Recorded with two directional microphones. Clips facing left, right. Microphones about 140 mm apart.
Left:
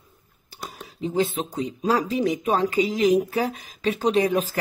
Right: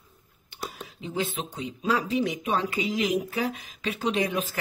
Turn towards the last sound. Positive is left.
turn(degrees=40)  # may be behind; listen again after turning